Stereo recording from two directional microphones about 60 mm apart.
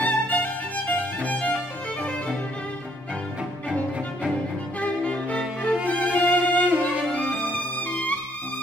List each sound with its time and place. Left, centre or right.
0.0 s music: left
4.7 s music: left